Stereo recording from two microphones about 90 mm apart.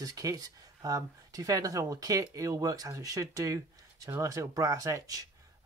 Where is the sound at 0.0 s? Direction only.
40° right (ahead or behind).